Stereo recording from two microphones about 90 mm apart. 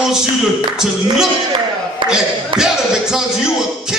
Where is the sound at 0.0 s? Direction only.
5° right (ahead or behind).